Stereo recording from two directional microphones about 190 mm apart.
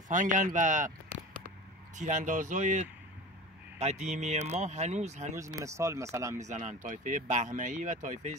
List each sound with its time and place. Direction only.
0.1 s speech: 40° right (ahead or behind)
2.0 s speech: 40° right (ahead or behind)
5.3 s speech: 15° right (ahead or behind)
6.5 s speech: 40° right (ahead or behind)